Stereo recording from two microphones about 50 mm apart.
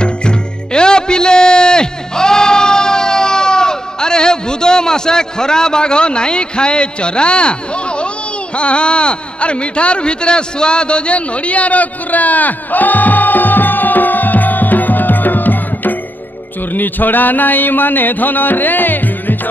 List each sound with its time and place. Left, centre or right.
0.0 s music: centre
8.5 s speech: left
16.7 s music: left